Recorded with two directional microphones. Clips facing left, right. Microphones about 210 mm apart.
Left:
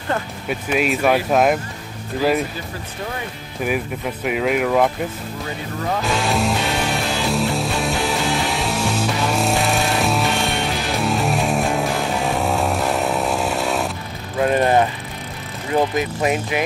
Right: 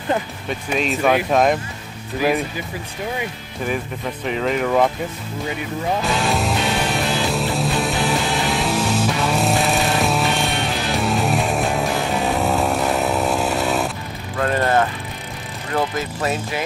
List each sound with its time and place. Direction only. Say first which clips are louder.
0.5 s speech: left 3 dB; 5° left (ahead or behind)
3.6 s speech: left 2 dB; 10° left (ahead or behind)
6.0 s music: left 1 dB; centre (ahead or behind)
14.4 s speech: left 2 dB; 15° left (ahead or behind)